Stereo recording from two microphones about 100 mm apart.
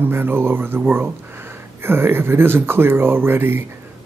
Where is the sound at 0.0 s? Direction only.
20° right (ahead or behind).